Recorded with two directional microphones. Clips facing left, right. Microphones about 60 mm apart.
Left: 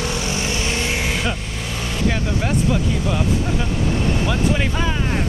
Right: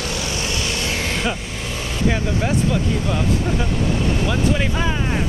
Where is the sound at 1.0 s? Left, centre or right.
Centre.